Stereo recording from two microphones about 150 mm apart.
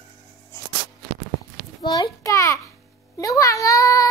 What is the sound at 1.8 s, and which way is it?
Child singing, 30° left (ahead or behind).